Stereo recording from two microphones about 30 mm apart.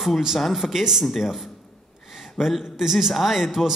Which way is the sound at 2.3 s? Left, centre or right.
Centre.